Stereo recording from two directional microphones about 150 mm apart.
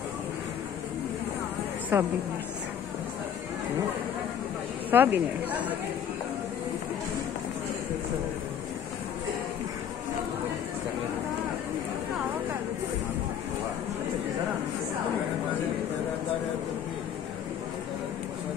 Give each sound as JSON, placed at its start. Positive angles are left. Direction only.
{"t": 1.9, "sound": "a woman's voice", "side_deg": -15}
{"t": 4.9, "sound": "speech", "side_deg": -15}